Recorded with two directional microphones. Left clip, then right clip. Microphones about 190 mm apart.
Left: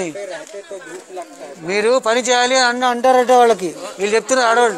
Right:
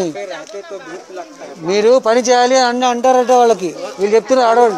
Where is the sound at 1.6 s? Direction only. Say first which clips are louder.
Right 4 dB; 20° right (ahead or behind).